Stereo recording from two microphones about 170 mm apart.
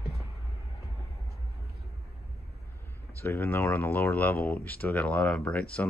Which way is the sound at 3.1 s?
10° left (ahead or behind).